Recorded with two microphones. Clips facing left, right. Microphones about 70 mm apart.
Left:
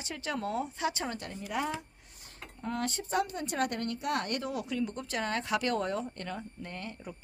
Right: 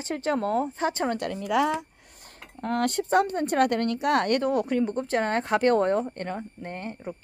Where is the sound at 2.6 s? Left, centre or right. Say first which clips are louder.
Right 9 dB; right.